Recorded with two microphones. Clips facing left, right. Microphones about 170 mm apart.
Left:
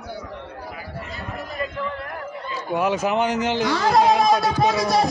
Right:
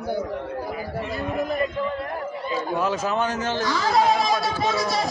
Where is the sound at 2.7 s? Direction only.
15° left (ahead or behind).